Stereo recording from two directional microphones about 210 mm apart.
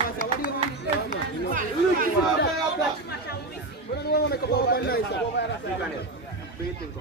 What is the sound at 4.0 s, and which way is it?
A man's voice, 50° left (ahead or behind).